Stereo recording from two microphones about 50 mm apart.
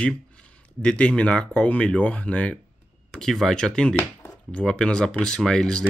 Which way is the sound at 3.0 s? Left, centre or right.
Centre.